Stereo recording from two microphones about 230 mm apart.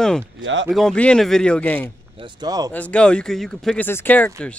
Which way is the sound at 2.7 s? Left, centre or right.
Centre.